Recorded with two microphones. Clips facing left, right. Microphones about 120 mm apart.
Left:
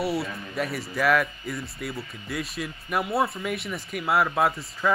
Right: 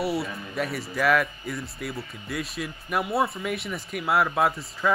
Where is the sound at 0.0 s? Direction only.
Centre (ahead or behind).